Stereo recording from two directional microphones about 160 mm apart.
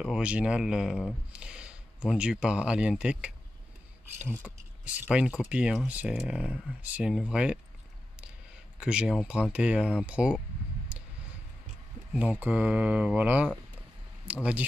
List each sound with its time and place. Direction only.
0.0 s speech: 5° right (ahead or behind)
4.8 s speech: 5° right (ahead or behind)
8.7 s speech: 5° right (ahead or behind)
12.1 s speech: 5° right (ahead or behind)